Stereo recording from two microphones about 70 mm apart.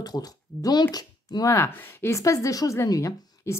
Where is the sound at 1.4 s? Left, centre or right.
Left.